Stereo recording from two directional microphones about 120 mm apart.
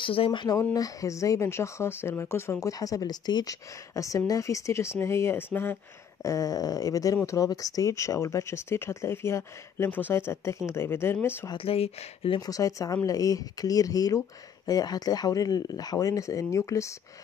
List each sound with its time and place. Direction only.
0.0 s speech: 45° left (ahead or behind)
0.7 s speech: 30° left (ahead or behind)
6.2 s speech: 30° left (ahead or behind)
11.5 s speech: 55° left (ahead or behind)
12.4 s speech: 30° left (ahead or behind)